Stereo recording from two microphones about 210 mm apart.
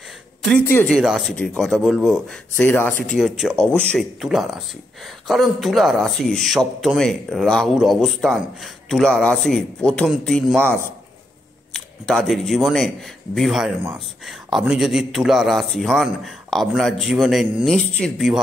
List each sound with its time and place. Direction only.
0.7 s a man's voice: 5° left (ahead or behind)
2.5 s a man's voice: 10° left (ahead or behind)